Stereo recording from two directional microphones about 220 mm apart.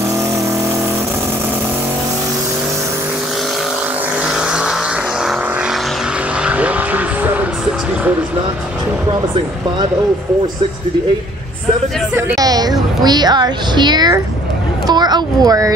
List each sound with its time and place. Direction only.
6.4 s vehicle: 5° right (ahead or behind)
12.2 s a woman's voice: 15° right (ahead or behind)